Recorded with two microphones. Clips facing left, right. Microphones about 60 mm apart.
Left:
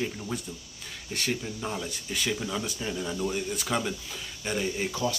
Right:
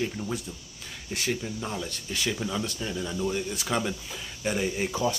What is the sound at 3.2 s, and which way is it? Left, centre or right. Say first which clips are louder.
Speech: right 1 dB; centre.